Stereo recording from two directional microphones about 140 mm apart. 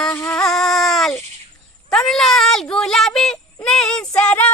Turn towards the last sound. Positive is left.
turn(degrees=10)  # may be behind; listen again after turning